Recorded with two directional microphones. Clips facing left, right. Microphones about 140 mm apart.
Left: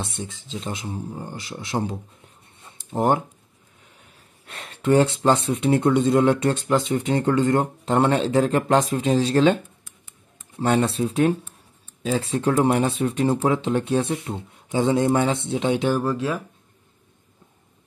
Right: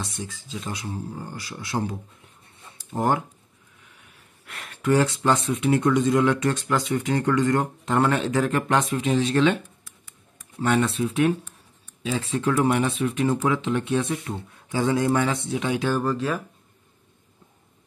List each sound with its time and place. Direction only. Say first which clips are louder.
0.0 s speech: left 2 dB; 25° left (ahead or behind)
16.0 s speech: left 1 dB; 5° left (ahead or behind)